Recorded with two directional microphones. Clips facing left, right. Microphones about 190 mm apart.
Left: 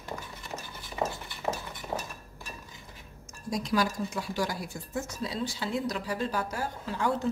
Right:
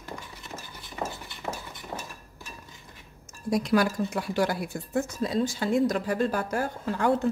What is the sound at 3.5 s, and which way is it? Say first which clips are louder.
Speech: right 5 dB; 60° right (ahead or behind).